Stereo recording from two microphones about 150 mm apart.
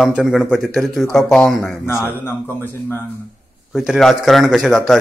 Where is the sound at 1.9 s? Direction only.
15° left (ahead or behind).